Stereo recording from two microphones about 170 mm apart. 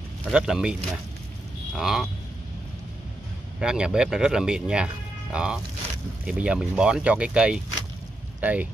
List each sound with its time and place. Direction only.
0.3 s speech: 5° right (ahead or behind)
3.5 s speech: 5° right (ahead or behind)